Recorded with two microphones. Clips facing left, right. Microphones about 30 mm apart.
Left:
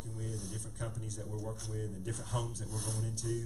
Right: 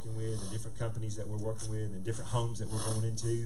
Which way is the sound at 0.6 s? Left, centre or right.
Centre.